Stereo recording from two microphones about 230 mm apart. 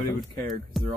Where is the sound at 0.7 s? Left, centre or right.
Centre.